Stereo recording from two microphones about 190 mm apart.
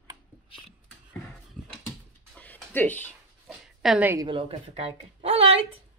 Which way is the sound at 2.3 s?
10° left (ahead or behind).